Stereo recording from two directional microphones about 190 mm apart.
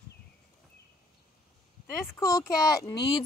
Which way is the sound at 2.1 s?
15° left (ahead or behind).